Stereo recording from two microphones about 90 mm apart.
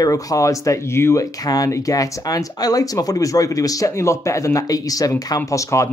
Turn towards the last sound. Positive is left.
turn(degrees=35)  # may be behind; listen again after turning